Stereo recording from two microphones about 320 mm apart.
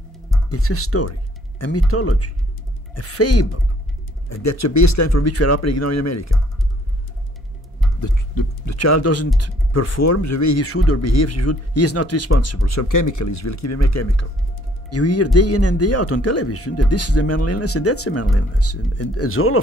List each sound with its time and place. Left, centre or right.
0.5 s speech: left
8.0 s speech: left